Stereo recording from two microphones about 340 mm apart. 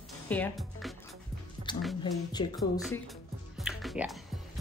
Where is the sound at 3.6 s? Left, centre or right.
Centre.